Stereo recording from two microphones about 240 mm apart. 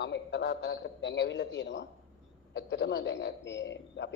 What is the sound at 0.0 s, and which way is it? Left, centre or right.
Speech, left.